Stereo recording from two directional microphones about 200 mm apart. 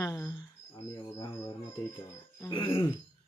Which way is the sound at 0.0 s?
15° left (ahead or behind).